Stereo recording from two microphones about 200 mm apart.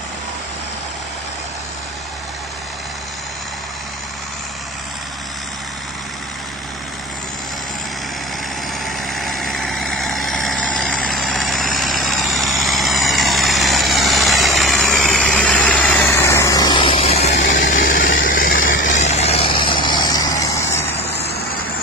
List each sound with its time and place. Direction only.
8.8 s vehicle: centre (ahead or behind); by 17.2 s 30° left (ahead or behind)
17.8 s vehicle: 45° left (ahead or behind); by 20.8 s 15° left (ahead or behind)